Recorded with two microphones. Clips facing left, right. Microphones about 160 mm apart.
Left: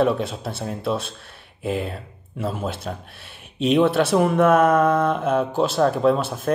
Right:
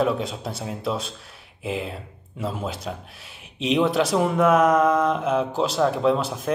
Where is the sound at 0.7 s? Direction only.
60° left (ahead or behind).